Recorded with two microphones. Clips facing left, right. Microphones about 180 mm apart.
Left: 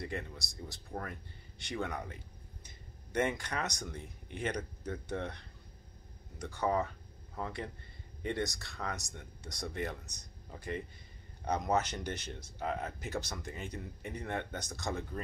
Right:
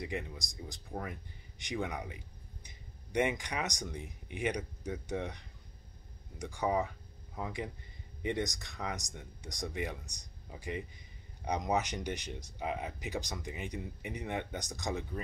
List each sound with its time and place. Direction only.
0.0 s speech: 15° right (ahead or behind)